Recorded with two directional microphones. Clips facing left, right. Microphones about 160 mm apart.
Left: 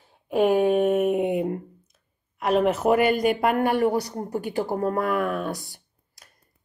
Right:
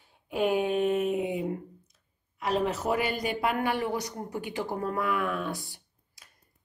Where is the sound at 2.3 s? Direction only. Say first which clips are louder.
Left 7 dB; 60° left (ahead or behind).